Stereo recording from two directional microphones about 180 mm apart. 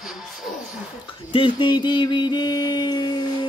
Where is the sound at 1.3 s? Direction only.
25° left (ahead or behind).